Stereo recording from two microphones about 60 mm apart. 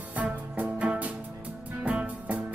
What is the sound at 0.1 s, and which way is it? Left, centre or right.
Music, right.